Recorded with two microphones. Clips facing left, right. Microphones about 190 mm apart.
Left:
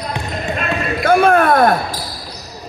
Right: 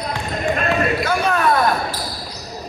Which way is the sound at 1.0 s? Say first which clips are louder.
Left 7 dB; 55° left (ahead or behind).